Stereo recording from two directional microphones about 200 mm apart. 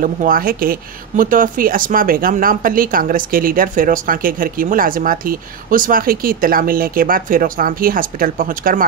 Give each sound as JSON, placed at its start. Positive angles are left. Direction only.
{"t": 0.0, "sound": "speech", "side_deg": -45}